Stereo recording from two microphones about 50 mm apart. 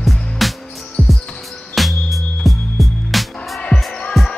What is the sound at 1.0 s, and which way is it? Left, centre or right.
Music, left.